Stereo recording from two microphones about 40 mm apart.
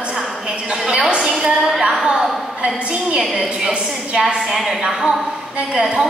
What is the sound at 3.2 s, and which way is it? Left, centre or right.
A woman's voice, centre.